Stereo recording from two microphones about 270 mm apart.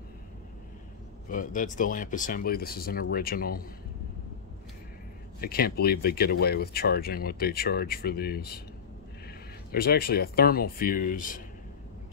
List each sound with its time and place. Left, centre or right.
1.3 s speech: left
5.4 s speech: left
9.7 s speech: left